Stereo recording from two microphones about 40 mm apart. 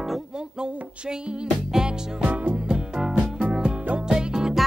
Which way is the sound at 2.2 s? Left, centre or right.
Right.